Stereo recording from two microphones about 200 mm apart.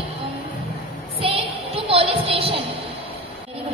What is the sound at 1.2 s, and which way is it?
Music, 30° right (ahead or behind).